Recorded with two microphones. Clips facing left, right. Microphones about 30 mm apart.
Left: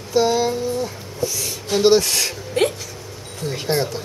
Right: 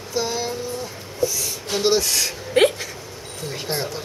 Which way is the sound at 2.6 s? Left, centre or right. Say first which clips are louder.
Right 3 dB; right.